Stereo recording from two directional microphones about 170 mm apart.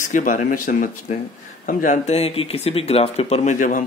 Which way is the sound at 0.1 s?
50° left (ahead or behind).